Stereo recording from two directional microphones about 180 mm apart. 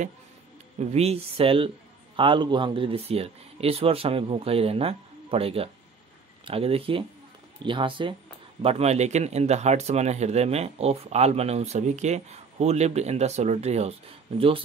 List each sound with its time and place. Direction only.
0.7 s speech: 35° right (ahead or behind)